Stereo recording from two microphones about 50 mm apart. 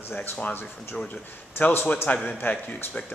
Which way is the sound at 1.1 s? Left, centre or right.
Left.